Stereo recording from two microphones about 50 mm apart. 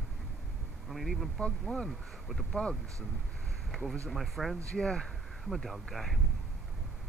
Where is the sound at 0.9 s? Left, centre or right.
Centre.